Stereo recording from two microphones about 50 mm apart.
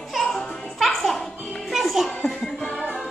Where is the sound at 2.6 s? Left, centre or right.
Left.